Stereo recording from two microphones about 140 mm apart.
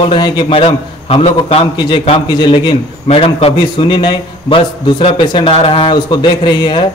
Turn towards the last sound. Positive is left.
turn(degrees=35)  # may be behind; listen again after turning